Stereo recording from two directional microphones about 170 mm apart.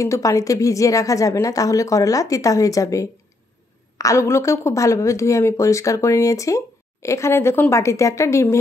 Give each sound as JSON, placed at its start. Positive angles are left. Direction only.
{"t": 0.0, "sound": "a woman's voice", "side_deg": 20}